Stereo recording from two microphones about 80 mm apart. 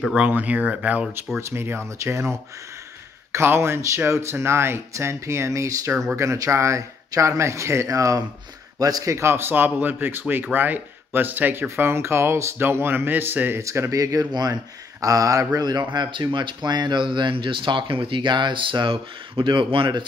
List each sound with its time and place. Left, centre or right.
0.3 s speech: centre
1.5 s speech: right
13.6 s speech: right
14.3 s speech: right
15.9 s speech: right